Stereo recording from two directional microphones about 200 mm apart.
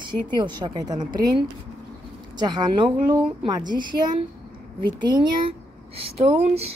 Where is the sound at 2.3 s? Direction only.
20° right (ahead or behind).